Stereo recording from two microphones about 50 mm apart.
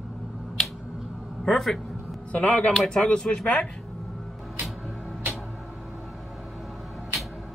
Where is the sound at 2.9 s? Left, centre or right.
Centre.